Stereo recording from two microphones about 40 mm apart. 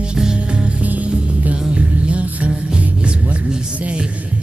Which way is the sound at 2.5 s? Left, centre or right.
Right.